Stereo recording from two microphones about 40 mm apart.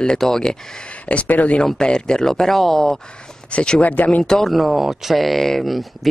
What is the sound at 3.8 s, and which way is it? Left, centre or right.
Speech, left.